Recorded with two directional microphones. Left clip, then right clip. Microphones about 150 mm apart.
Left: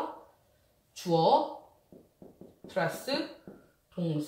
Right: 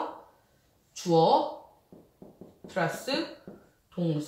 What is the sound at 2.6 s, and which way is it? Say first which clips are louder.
Speech: right 1 dB; 5° left (ahead or behind).